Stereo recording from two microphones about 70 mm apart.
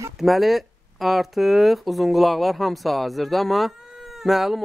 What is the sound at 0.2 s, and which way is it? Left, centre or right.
Speech, centre.